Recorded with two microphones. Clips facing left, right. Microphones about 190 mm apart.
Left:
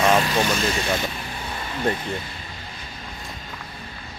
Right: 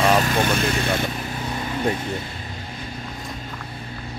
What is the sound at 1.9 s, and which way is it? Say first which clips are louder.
Speech: even; 10° right (ahead or behind).